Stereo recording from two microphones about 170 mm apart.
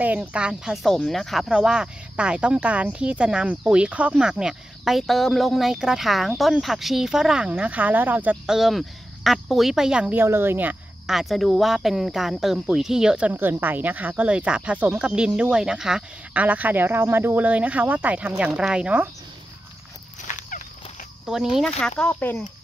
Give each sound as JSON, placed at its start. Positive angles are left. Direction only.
{"t": 0.0, "sound": "speech", "side_deg": -10}
{"t": 20.2, "sound": "fowl", "side_deg": 45}
{"t": 21.3, "sound": "speech", "side_deg": 0}